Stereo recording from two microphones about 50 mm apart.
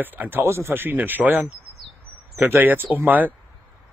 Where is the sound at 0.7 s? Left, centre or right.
Right.